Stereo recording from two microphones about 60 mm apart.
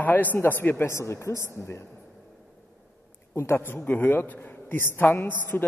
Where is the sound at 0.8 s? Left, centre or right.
Left.